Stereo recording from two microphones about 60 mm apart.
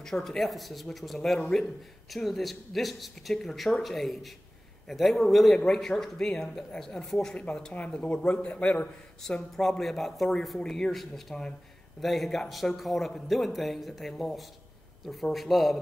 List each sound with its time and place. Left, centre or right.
0.0 s a man's voice: centre
7.3 s speech: centre
9.2 s a man's voice: centre